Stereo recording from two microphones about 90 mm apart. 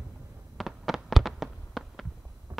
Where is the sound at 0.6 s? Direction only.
Centre (ahead or behind).